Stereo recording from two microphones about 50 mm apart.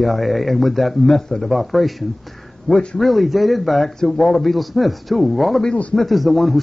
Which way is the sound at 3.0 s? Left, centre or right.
Centre.